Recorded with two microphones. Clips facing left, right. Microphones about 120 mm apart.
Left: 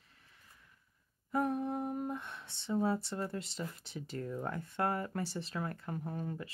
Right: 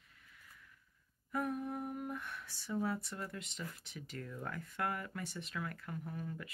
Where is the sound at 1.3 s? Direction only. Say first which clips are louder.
Left 5 dB; 30° left (ahead or behind).